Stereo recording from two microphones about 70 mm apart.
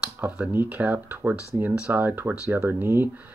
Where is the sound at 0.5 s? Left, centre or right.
Right.